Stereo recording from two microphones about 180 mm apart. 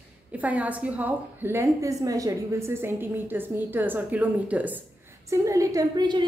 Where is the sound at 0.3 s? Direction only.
10° right (ahead or behind).